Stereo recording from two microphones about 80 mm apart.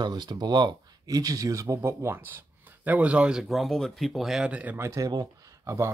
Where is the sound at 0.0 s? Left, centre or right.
Right; by 4.5 s centre.